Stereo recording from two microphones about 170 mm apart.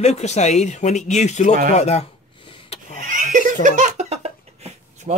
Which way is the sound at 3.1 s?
50° right (ahead or behind).